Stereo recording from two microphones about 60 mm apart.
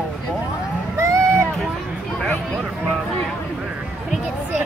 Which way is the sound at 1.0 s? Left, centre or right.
Right.